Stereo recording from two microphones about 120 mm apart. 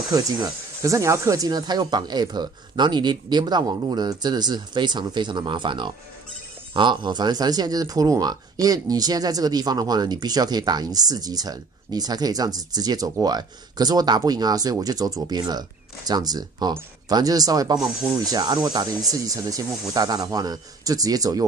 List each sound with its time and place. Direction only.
0.1 s speech: 30° right (ahead or behind)